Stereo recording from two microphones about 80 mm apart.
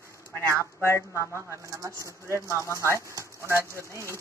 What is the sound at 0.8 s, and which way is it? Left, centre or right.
Speech, left.